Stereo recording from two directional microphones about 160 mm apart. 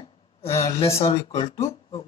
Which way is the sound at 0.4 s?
40° left (ahead or behind).